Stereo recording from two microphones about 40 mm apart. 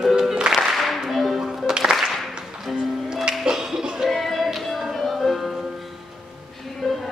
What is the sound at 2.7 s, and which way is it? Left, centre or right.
Music, centre.